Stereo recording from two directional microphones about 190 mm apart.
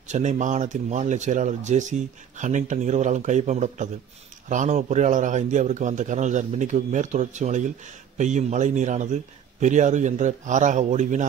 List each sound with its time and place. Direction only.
0.1 s speech: 40° right (ahead or behind)